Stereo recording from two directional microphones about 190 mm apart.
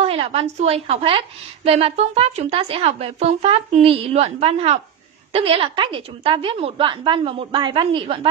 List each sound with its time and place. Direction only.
0.0 s a woman's voice: 30° right (ahead or behind)